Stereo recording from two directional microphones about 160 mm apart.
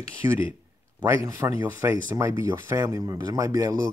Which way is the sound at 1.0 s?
20° right (ahead or behind).